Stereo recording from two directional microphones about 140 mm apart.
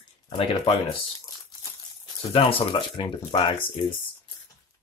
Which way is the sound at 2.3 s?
40° left (ahead or behind).